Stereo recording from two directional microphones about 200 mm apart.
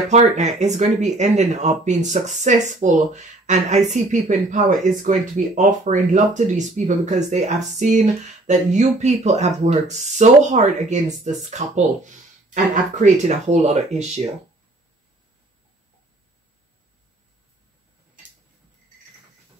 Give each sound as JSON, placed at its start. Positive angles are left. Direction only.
{"t": 0.1, "sound": "speech", "side_deg": -35}